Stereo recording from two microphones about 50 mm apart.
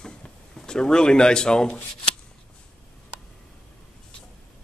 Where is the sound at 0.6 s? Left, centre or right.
Centre.